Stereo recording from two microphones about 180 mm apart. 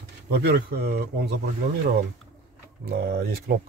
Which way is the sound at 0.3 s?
65° right (ahead or behind).